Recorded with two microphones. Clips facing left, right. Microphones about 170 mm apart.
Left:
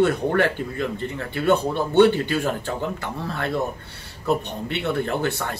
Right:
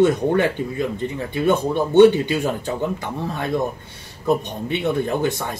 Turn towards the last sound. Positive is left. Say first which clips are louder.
# right 3 dB
turn(degrees=-15)  # may be behind; listen again after turning